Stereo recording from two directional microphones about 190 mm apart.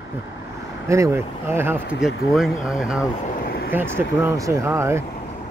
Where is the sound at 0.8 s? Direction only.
15° right (ahead or behind).